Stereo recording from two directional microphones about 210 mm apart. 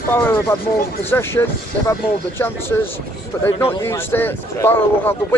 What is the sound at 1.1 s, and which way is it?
A man's voice, 10° left (ahead or behind).